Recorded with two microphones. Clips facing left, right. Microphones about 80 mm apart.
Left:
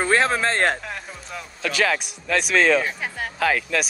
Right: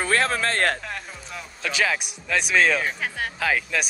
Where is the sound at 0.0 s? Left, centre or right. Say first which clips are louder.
Left 3 dB; left.